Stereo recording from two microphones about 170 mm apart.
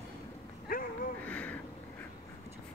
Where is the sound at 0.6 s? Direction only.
55° left (ahead or behind).